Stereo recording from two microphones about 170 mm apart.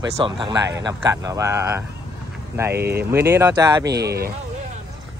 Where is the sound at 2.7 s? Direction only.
70° right (ahead or behind).